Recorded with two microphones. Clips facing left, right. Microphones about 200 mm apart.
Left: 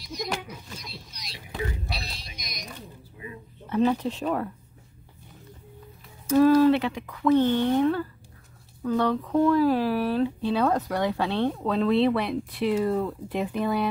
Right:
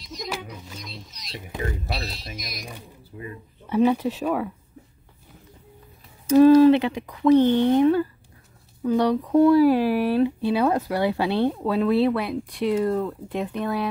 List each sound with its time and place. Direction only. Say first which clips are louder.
0.0 s speech: left 1 dB; centre (ahead or behind)
6.2 s speech: right 5 dB; 20° right (ahead or behind); by 13.8 s centre (ahead or behind)